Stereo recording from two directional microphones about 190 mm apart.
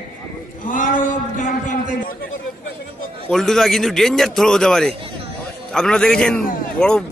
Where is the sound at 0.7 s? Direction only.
45° left (ahead or behind).